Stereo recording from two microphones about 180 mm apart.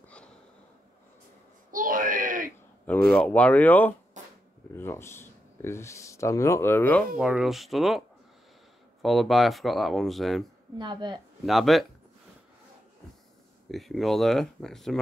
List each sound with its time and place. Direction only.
1.7 s wail: 50° right (ahead or behind)
2.9 s speech: 5° left (ahead or behind)
4.2 s a sound: 40° right (ahead or behind)
4.7 s speech: 15° left (ahead or behind)
7.2 s speech: 5° right (ahead or behind)
9.0 s speech: centre (ahead or behind)
10.8 s speech: 25° right (ahead or behind)
11.4 s speech: centre (ahead or behind)
13.7 s speech: centre (ahead or behind)